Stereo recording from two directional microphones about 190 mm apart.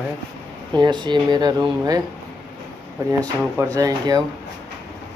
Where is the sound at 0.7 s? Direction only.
25° right (ahead or behind).